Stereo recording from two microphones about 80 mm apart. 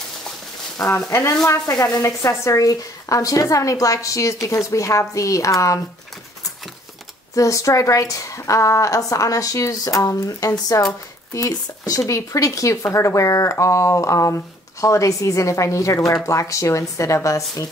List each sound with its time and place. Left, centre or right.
0.8 s speech: left
7.3 s speech: left